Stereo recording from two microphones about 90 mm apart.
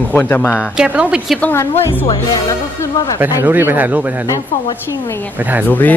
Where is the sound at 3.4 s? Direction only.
25° right (ahead or behind).